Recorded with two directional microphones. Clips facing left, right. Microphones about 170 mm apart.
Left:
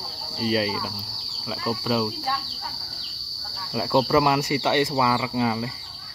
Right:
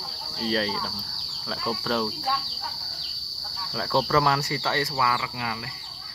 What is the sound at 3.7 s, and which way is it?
Speech, 15° left (ahead or behind).